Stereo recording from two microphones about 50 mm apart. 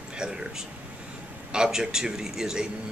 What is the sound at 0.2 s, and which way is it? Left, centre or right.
Speech, centre.